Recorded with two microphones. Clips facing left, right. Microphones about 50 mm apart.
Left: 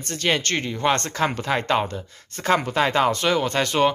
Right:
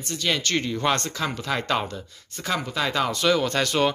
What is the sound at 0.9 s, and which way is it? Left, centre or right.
Speech, left.